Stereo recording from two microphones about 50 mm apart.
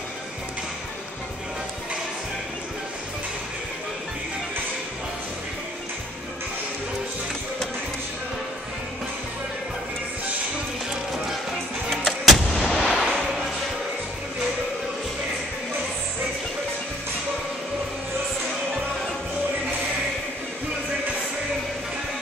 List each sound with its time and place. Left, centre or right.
11.9 s artillery fire: centre